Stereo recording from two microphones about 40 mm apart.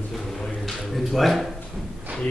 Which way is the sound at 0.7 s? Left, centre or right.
Centre.